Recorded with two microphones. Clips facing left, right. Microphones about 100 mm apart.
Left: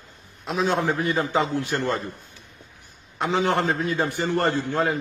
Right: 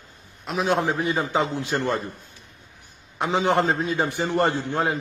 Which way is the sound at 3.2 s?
20° right (ahead or behind).